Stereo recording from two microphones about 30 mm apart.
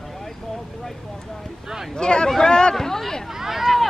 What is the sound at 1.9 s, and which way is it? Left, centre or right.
Speech, left.